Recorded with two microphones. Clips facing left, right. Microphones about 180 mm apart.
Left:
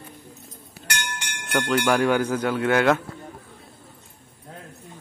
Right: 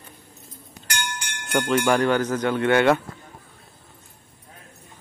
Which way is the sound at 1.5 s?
Centre (ahead or behind).